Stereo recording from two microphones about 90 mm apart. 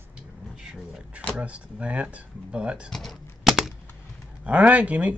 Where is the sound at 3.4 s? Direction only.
5° right (ahead or behind).